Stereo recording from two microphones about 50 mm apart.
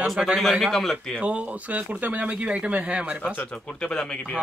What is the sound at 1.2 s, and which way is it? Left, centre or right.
Speech, right.